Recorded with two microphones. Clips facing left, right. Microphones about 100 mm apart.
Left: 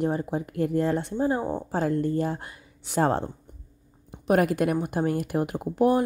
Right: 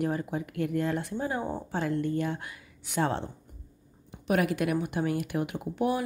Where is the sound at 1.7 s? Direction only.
40° left (ahead or behind).